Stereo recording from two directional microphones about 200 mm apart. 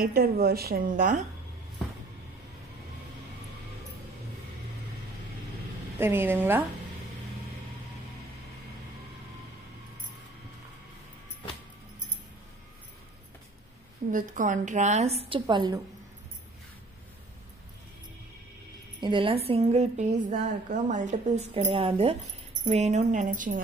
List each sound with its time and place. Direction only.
0.0 s a woman's voice: 50° right (ahead or behind)
5.9 s a woman's voice: 10° right (ahead or behind)
14.1 s a woman's voice: 40° right (ahead or behind); by 15.8 s 20° right (ahead or behind)
18.9 s a woman's voice: 25° right (ahead or behind); by 23.6 s 40° right (ahead or behind)